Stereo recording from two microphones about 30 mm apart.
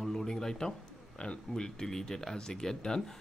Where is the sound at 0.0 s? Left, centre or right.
Centre.